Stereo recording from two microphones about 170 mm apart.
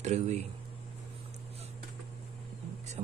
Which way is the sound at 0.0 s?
40° right (ahead or behind).